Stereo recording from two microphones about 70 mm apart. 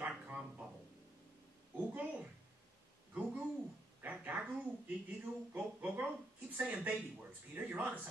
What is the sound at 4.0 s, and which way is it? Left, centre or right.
Speech, right.